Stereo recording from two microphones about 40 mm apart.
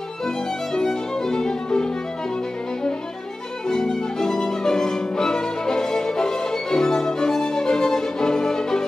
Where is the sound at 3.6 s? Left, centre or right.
Centre.